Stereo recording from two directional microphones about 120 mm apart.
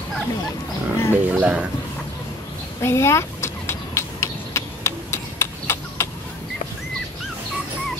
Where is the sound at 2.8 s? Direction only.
20° left (ahead or behind).